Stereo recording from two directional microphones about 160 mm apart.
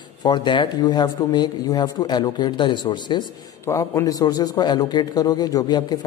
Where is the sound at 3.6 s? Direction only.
20° left (ahead or behind).